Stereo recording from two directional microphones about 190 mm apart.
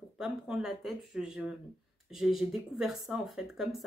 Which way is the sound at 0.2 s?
5° right (ahead or behind).